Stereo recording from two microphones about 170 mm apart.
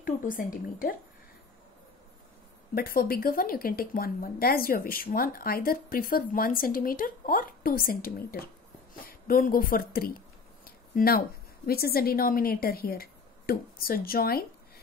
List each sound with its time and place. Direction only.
0.0 s a woman's voice: 55° left (ahead or behind)
2.7 s a woman's voice: 60° left (ahead or behind)